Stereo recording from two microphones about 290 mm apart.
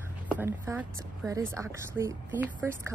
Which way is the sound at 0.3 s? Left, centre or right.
Centre.